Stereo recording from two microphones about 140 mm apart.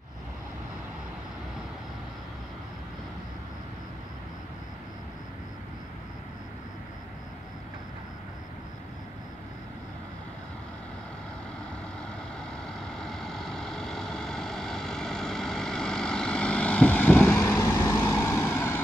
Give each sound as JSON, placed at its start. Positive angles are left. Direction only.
{"t": 12.6, "sound": "vehicle", "side_deg": 5}